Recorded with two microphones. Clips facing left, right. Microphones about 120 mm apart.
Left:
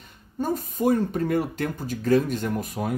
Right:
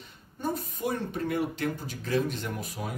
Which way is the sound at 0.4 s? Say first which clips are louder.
Left 6 dB; 45° left (ahead or behind).